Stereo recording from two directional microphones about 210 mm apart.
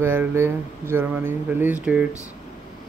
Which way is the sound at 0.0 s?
10° right (ahead or behind).